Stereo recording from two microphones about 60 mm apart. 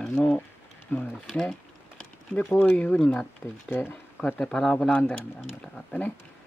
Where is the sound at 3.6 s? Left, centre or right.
Left.